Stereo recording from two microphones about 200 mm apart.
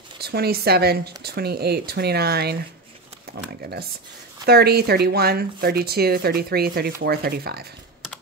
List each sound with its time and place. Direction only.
0.2 s speech: 50° right (ahead or behind)
4.5 s speech: 50° right (ahead or behind)